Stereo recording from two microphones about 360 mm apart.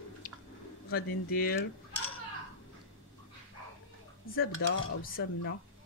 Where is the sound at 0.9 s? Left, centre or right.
Left.